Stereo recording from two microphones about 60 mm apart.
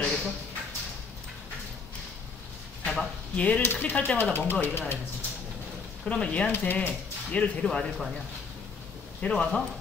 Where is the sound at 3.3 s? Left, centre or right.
Left.